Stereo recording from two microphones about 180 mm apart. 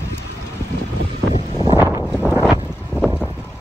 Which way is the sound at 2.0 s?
5° right (ahead or behind).